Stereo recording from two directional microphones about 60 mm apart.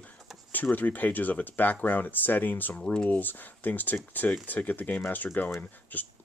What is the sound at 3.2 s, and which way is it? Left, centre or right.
Speech, left.